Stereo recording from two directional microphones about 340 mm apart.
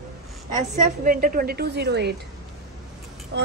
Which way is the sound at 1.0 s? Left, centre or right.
Right.